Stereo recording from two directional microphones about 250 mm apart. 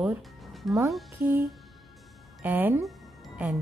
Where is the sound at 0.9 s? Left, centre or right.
Centre.